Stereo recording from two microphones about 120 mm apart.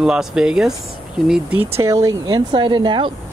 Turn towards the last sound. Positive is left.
turn(degrees=-40)  # may be behind; listen again after turning